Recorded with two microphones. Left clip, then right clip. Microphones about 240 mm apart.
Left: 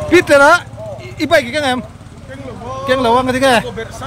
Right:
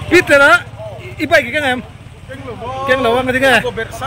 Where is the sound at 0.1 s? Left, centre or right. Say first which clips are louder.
Even; centre.